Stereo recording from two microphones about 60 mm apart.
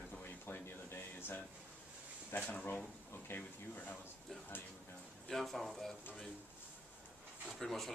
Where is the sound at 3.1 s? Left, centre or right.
Left.